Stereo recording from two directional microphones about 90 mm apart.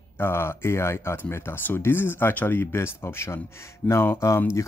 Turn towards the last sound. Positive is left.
turn(degrees=30)  # may be behind; listen again after turning